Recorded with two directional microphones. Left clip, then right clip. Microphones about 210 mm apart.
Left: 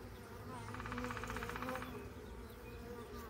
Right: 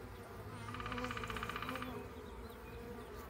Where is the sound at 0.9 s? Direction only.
30° left (ahead or behind).